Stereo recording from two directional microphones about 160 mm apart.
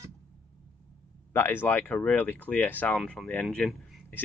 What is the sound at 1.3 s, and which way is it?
Speech, 15° left (ahead or behind).